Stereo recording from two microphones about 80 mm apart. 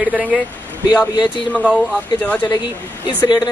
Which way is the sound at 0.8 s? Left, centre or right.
Left.